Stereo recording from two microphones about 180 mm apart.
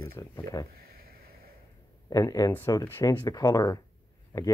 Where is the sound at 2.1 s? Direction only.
20° left (ahead or behind).